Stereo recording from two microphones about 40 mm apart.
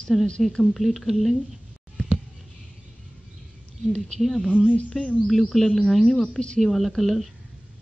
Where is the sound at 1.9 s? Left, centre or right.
Centre.